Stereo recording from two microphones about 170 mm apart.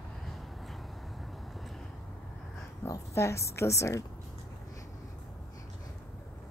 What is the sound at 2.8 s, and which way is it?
A woman's voice, 15° left (ahead or behind).